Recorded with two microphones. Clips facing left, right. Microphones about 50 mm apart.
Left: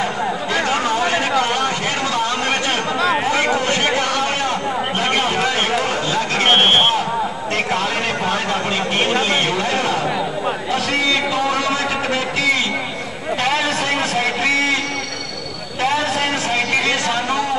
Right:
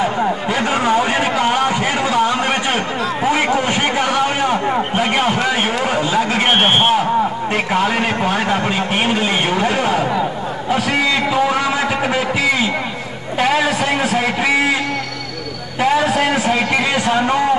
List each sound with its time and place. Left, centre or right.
0.0 s a sound: centre
4.0 s a man's voice: centre
15.8 s a man's voice: centre